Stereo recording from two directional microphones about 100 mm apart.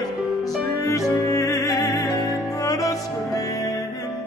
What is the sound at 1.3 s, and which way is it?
Music, 30° left (ahead or behind).